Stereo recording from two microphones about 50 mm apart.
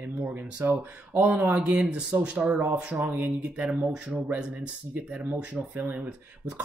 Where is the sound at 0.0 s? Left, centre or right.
Right.